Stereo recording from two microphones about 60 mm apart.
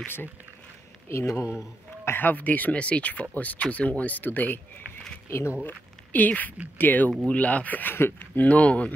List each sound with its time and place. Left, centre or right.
0.0 s speech: left
1.2 s speech: left
2.0 s speech: left